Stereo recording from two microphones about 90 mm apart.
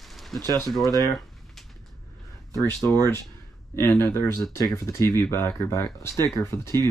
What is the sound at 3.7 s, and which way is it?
Speech, 25° left (ahead or behind).